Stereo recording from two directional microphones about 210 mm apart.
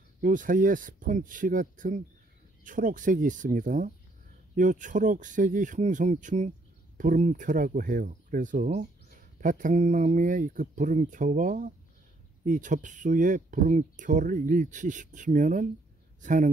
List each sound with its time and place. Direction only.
0.2 s speech: 40° right (ahead or behind)